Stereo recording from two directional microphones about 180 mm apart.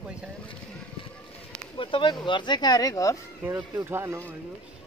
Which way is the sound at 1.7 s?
30° left (ahead or behind).